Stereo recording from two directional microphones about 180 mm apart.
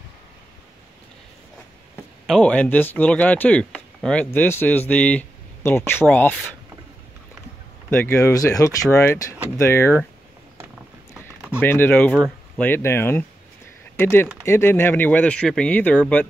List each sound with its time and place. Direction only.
2.2 s speech: 5° left (ahead or behind)
7.9 s speech: 15° left (ahead or behind)
11.6 s speech: 10° left (ahead or behind)